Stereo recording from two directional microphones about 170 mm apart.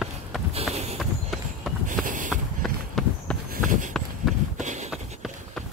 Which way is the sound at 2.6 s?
5° left (ahead or behind).